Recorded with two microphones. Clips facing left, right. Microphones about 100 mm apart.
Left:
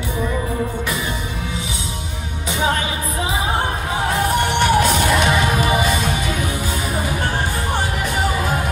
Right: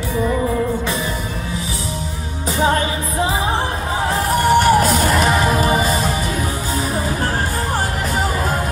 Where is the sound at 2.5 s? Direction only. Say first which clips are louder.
Right 3 dB; 35° right (ahead or behind).